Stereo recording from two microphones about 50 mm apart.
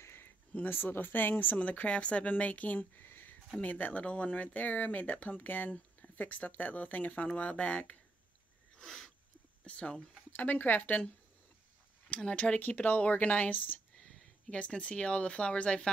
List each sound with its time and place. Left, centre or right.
0.0 s a sound: left
0.7 s speech: left
3.1 s a sound: left
3.6 s speech: left
8.7 s wheeze: centre
9.7 s speech: left
10.3 s speech: left
12.1 s speech: left
12.5 s speech: left
13.9 s speech: centre